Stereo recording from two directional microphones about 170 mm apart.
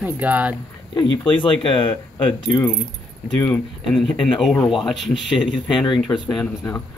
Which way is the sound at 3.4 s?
5° left (ahead or behind).